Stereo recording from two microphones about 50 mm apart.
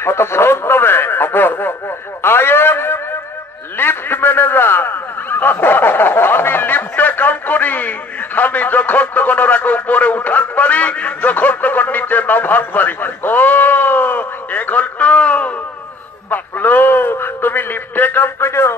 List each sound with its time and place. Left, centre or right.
0.0 s radio: left
3.7 s a man's voice: left
16.3 s a sound: left
17.1 s speech: left
18.4 s speech: left